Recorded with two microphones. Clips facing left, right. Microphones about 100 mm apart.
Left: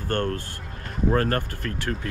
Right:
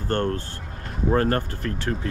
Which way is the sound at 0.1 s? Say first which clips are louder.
Right 2 dB; 20° right (ahead or behind).